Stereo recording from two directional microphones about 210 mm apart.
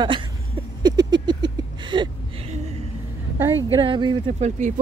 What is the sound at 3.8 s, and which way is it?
Speech, 25° right (ahead or behind).